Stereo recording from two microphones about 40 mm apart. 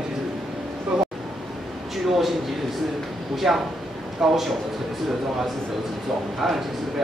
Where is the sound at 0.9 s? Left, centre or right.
Centre.